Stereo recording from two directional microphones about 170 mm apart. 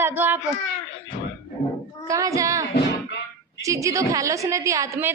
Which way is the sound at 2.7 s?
80° left.